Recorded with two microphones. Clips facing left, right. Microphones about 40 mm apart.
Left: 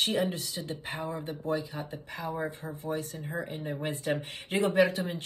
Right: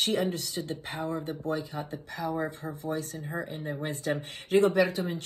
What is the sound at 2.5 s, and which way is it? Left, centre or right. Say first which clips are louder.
Speech: right 1 dB; right.